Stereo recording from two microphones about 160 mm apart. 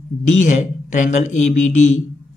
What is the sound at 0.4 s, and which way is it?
Speech, 50° left (ahead or behind).